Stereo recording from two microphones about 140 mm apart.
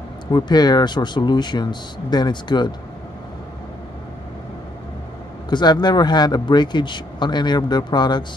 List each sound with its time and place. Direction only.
0.3 s speech: 30° left (ahead or behind)
5.5 s speech: 30° left (ahead or behind)